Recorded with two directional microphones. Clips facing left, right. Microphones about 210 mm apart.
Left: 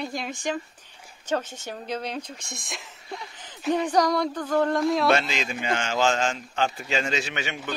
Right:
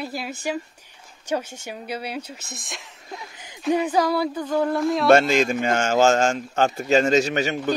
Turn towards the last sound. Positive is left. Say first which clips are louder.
# right 9 dB
turn(degrees=-40)  # may be behind; listen again after turning